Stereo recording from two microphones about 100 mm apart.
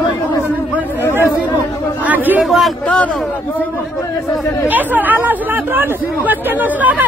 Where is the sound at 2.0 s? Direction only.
15° right (ahead or behind).